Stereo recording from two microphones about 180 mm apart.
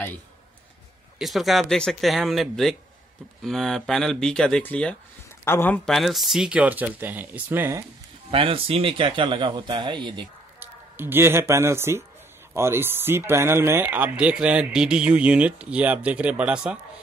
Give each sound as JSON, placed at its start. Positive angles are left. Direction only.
{"t": 1.1, "sound": "speech", "side_deg": 0}
{"t": 8.3, "sound": "speech", "side_deg": -30}
{"t": 10.6, "sound": "speech", "side_deg": -10}